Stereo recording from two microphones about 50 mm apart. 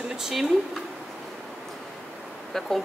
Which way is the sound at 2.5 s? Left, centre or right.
Centre.